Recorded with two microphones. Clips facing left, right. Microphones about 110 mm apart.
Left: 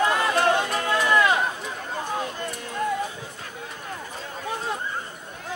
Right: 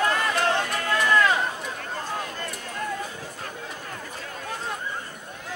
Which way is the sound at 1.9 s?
15° left (ahead or behind).